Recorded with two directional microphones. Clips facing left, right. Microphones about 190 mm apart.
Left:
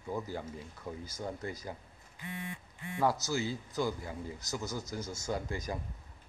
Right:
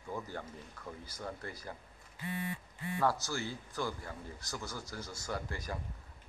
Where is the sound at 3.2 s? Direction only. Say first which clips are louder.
Left 5 dB; 15° left (ahead or behind).